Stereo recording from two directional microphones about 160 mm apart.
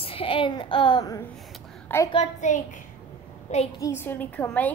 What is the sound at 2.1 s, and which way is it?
Speech, 45° left (ahead or behind).